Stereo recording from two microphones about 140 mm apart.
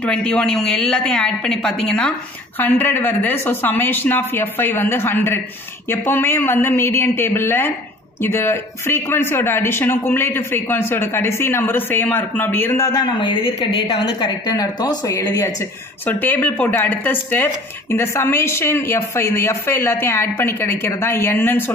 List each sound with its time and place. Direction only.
0.0 s speech: 5° left (ahead or behind); by 15.5 s 25° left (ahead or behind)
16.1 s speech: 15° left (ahead or behind)